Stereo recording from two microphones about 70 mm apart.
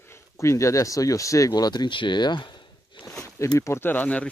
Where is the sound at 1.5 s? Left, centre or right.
Left.